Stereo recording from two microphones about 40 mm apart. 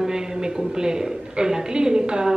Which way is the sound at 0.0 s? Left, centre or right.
Centre.